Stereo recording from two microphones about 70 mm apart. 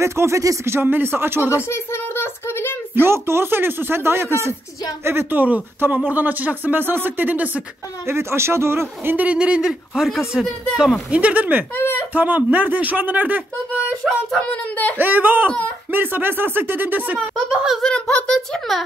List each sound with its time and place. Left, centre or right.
0.0 s speech: right
0.7 s speech: right
1.5 s a sound: left
2.9 s speech: right
8.1 s speech: right
9.1 s speech: right; by 10.5 s centre
11.1 s speech: centre
11.7 s speech: left
12.1 s speech: right
14.0 s a child's voice: centre
15.0 s speech: right
17.5 s speech: centre
17.8 s a child's voice: centre